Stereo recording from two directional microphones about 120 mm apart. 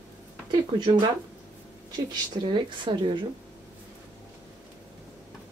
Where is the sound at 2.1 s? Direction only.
40° right (ahead or behind).